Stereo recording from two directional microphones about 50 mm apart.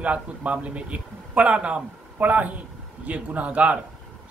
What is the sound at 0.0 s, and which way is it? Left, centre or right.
A man's voice, right.